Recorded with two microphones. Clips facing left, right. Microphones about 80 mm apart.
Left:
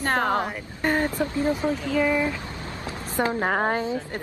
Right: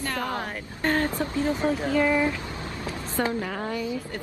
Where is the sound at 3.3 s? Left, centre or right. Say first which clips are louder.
Left 7 dB; left.